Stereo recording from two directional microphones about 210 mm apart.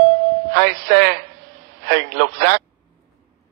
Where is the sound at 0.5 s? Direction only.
50° right (ahead or behind).